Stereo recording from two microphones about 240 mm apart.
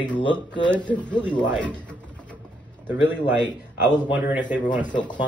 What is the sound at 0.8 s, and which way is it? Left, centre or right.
Speech, centre.